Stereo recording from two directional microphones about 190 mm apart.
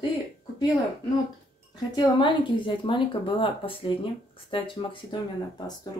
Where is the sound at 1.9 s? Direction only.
20° left (ahead or behind).